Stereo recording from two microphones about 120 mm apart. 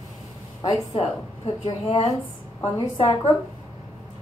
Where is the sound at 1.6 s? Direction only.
50° left (ahead or behind).